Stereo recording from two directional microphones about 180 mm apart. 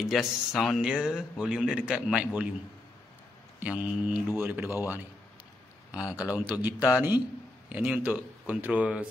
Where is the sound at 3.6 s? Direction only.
5° right (ahead or behind).